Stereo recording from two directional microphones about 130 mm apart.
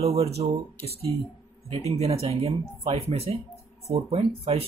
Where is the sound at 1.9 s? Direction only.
50° right (ahead or behind).